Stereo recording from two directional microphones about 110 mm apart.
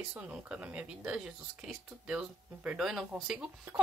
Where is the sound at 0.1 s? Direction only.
10° right (ahead or behind).